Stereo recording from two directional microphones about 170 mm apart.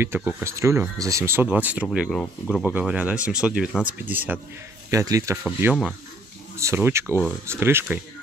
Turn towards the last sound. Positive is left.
turn(degrees=-15)  # may be behind; listen again after turning